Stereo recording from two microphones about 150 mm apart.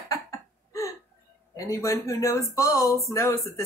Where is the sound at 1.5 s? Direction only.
20° left (ahead or behind).